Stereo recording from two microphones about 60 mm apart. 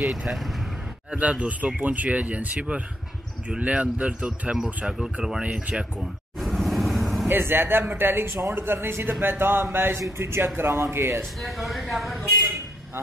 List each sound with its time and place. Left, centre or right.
1.1 s speech: right
4.8 s speech: centre
5.4 s speech: right
5.9 s vehicle: centre
7.2 s speech: right
7.8 s speech: right
8.1 s speech: right
11.4 s a woman's voice: centre